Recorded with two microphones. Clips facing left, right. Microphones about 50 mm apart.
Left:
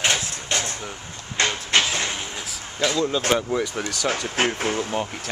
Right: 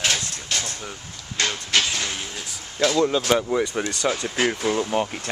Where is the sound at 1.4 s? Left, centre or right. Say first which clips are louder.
Left 2 dB; left.